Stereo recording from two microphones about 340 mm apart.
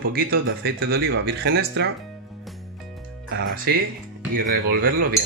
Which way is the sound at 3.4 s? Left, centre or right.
Right.